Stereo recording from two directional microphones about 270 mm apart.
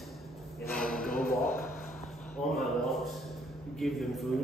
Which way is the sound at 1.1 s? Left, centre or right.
Left.